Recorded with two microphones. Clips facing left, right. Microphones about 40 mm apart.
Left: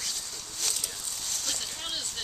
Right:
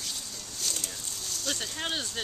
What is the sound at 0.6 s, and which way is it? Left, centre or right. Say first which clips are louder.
Speech: even; left.